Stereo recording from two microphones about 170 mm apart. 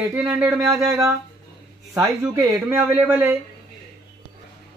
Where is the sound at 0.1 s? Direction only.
5° right (ahead or behind).